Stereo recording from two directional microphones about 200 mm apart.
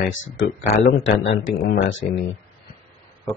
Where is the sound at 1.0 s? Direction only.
55° left (ahead or behind).